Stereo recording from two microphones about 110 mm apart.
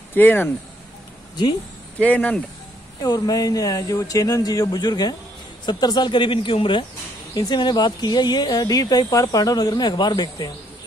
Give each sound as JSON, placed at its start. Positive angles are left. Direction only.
{"t": 0.1, "sound": "speech", "side_deg": 20}
{"t": 1.3, "sound": "speech", "side_deg": 40}
{"t": 2.0, "sound": "speech", "side_deg": 15}
{"t": 3.0, "sound": "speech", "side_deg": 35}
{"t": 7.3, "sound": "speech", "side_deg": 40}